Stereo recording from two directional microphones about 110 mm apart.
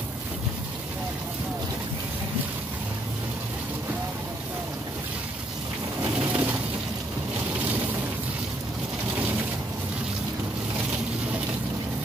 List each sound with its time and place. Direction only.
6.2 s pigeon: 15° right (ahead or behind)